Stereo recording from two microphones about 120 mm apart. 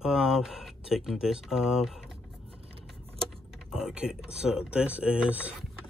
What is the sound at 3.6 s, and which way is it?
Speech, 5° right (ahead or behind).